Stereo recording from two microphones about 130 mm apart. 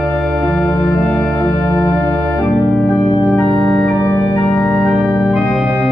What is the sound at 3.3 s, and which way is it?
Organ, 10° left (ahead or behind).